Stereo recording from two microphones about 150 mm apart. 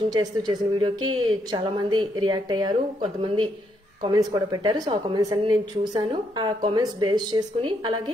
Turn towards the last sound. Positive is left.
turn(degrees=-30)  # may be behind; listen again after turning